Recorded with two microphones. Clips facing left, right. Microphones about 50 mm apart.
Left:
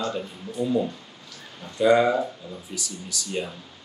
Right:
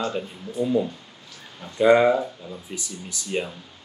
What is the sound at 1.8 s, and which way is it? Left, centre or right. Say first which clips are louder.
Speech: right 2 dB; right.